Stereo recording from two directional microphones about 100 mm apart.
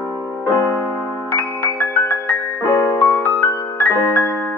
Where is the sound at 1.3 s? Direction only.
15° left (ahead or behind).